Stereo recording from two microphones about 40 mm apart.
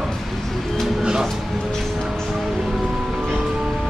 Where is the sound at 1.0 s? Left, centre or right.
Centre.